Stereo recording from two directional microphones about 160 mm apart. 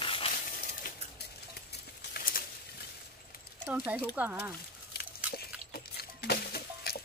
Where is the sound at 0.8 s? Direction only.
65° left (ahead or behind).